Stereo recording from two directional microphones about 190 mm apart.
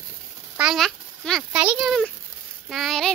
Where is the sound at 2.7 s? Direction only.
Centre (ahead or behind).